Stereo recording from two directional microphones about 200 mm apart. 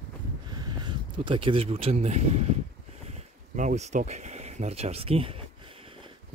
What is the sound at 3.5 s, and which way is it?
Speech, 35° right (ahead or behind).